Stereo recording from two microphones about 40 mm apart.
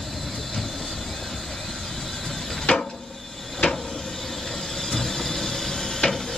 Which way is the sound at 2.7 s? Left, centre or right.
Left.